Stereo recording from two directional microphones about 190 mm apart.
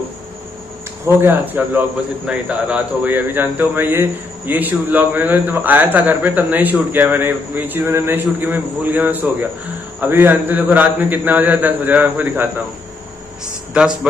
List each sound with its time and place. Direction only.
1.0 s a man's voice: 10° right (ahead or behind)
13.7 s a man's voice: 5° right (ahead or behind)